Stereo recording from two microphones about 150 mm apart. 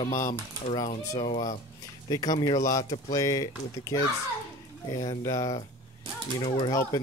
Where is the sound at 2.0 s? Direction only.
25° left (ahead or behind).